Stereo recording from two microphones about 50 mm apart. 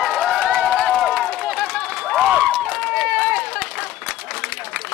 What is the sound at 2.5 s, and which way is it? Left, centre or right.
Run, centre.